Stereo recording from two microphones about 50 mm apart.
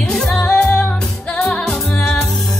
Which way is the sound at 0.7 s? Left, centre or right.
Left.